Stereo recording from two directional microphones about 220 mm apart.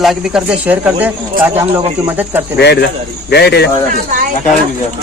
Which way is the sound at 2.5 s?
50° left (ahead or behind).